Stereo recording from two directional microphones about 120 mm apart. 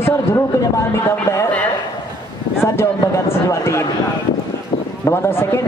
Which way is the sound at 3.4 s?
25° left (ahead or behind).